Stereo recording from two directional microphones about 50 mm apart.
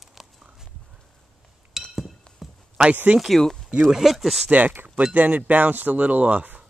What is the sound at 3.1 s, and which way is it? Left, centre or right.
Speech, centre.